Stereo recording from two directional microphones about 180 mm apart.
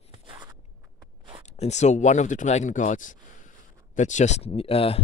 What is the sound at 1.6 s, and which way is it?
Speech, 40° left (ahead or behind).